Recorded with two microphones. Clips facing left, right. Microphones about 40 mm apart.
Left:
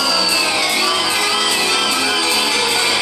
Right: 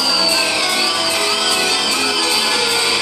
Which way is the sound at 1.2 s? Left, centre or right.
Centre.